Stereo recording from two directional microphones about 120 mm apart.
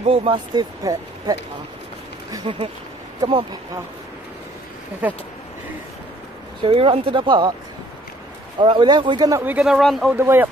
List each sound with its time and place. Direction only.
0.0 s speech: 55° right (ahead or behind)
0.6 s speech: 35° right (ahead or behind)
2.4 s speech: 45° right (ahead or behind)
3.2 s speech: 35° right (ahead or behind)
5.0 s speech: 10° right (ahead or behind)
6.6 s speech: 45° right (ahead or behind)
8.5 s speech: 40° right (ahead or behind)
9.4 s speech: 15° right (ahead or behind)
9.7 s a man's voice: centre (ahead or behind)
10.1 s speech: 15° right (ahead or behind)